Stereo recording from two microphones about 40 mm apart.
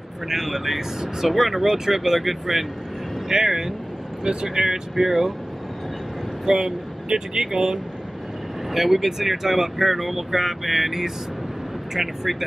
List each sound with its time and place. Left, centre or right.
0.3 s speech: centre
6.4 s speech: centre